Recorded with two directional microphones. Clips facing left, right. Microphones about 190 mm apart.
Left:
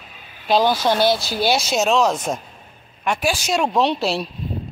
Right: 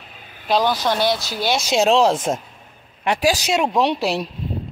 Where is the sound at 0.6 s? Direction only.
5° left (ahead or behind).